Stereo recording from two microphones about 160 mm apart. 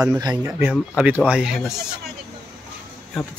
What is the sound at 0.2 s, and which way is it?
Speech, 25° right (ahead or behind).